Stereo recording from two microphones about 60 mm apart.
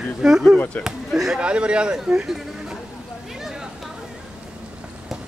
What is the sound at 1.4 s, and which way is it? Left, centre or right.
Speech, centre.